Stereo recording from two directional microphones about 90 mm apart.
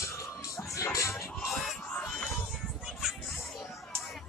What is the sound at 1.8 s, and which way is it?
Music, 10° left (ahead or behind).